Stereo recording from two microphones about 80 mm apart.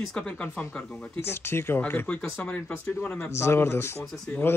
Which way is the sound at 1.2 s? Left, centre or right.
Left.